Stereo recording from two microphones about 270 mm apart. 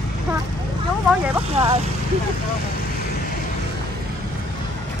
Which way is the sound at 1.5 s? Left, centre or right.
Right.